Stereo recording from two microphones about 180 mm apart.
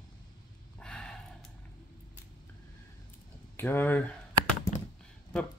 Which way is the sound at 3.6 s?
10° left (ahead or behind).